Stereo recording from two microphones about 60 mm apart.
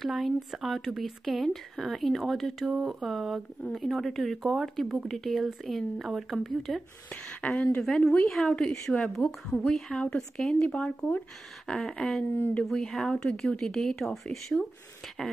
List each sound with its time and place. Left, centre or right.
0.0 s speech: centre
7.4 s speech: left
7.8 s speech: centre
10.5 s speech: left
11.6 s speech: centre